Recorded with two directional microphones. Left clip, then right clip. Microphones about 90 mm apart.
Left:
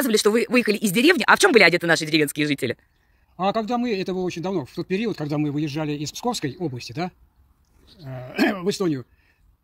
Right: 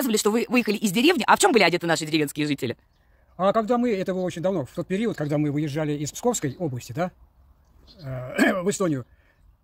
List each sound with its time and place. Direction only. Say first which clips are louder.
0.0 s speech: left 4 dB; 5° right (ahead or behind)
3.3 s a man's voice: right 2 dB; 45° right (ahead or behind)
8.0 s speech: right 2 dB; 30° right (ahead or behind)
8.4 s a man's voice: even; 50° right (ahead or behind)